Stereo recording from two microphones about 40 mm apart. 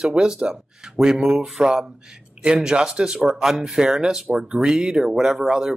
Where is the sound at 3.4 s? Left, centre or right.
Centre.